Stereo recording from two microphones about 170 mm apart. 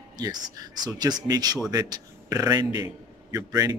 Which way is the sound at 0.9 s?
20° right (ahead or behind).